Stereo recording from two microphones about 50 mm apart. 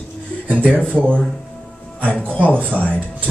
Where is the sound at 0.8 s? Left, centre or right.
Centre.